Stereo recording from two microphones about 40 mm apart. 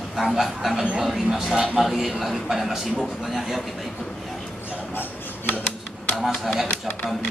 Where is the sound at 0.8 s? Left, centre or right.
Right.